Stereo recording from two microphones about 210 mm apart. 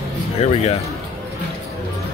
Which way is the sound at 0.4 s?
30° left (ahead or behind).